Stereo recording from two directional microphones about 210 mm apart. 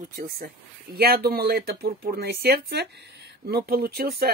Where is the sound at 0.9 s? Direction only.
50° right (ahead or behind).